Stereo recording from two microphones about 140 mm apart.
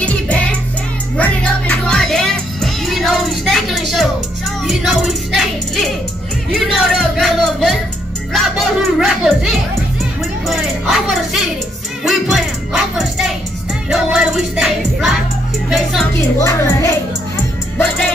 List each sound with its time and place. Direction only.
0.0 s music: 10° left (ahead or behind)
16.3 s speech: 20° left (ahead or behind)